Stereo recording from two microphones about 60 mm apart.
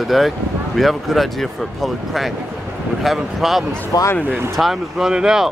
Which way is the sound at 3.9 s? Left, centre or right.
Left.